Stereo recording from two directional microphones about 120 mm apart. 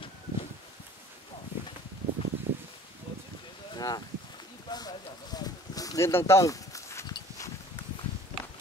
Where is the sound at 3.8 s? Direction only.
35° left (ahead or behind).